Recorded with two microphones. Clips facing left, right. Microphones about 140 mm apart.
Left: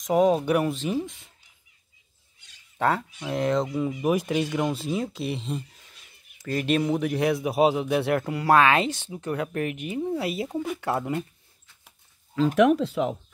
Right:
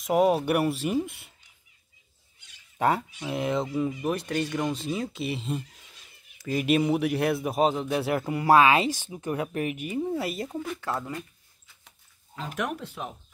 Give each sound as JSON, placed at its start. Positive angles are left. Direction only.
{"t": 0.0, "sound": "a man's voice", "side_deg": -5}
{"t": 2.8, "sound": "a man's voice", "side_deg": -10}
{"t": 4.0, "sound": "a man's voice", "side_deg": 10}
{"t": 10.8, "sound": "speech", "side_deg": 25}
{"t": 12.5, "sound": "speech", "side_deg": 90}